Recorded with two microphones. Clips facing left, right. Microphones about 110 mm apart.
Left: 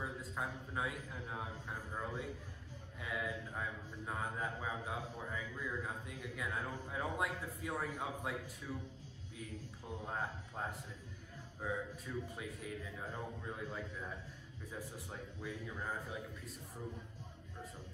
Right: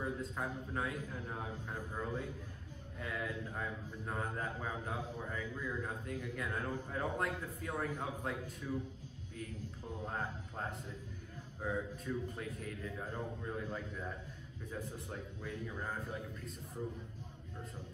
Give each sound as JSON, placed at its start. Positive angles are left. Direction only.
{"t": 0.0, "sound": "a man's voice", "side_deg": 5}
{"t": 10.0, "sound": "a man's voice", "side_deg": 5}
{"t": 14.7, "sound": "a man's voice", "side_deg": 5}